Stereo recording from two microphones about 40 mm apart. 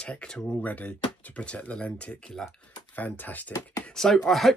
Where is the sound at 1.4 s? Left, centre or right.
Left.